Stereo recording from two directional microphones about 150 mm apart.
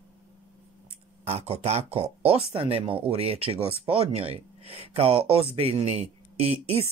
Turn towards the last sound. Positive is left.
turn(degrees=-40)  # may be behind; listen again after turning